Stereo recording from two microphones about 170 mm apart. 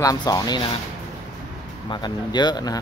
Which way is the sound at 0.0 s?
20° left (ahead or behind).